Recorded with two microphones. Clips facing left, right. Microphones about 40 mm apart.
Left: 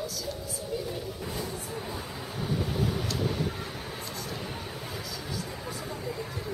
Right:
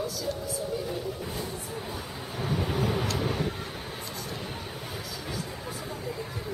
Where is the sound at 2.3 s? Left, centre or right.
Right.